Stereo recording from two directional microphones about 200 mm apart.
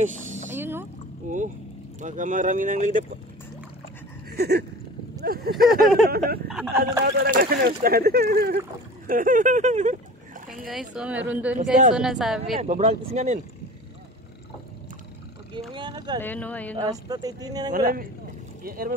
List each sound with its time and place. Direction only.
0.0 s a sound: 35° right (ahead or behind)
0.6 s boat: 10° right (ahead or behind)
1.3 s speech: 40° right (ahead or behind)
4.3 s a sound: 55° right (ahead or behind)
5.6 s speech: centre (ahead or behind)
6.0 s speech: 50° right (ahead or behind)
10.7 s a woman's voice: 5° right (ahead or behind)
12.5 s speech: 30° right (ahead or behind)
15.7 s speech: 25° right (ahead or behind)
16.2 s speech: 10° left (ahead or behind)
16.7 s speech: 20° right (ahead or behind)
17.7 s speech: 45° right (ahead or behind)